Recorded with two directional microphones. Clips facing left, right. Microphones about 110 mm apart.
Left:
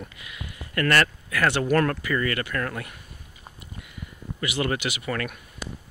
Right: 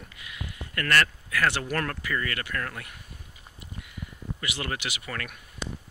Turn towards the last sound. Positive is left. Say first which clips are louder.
# left 6 dB
turn(degrees=25)  # may be behind; listen again after turning